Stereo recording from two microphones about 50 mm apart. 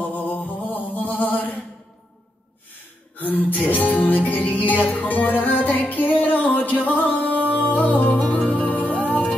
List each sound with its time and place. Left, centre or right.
0.1 s mantra: left
3.2 s music: left